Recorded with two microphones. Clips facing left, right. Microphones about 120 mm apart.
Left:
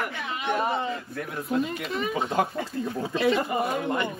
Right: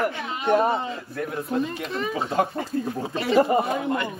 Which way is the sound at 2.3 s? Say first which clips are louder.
Right 2 dB; 30° right (ahead or behind).